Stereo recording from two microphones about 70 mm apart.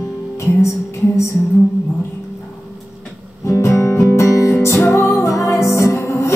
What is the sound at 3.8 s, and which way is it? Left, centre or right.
Music, left.